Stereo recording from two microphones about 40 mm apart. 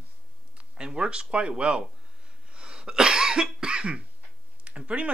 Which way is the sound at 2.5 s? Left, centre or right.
Right.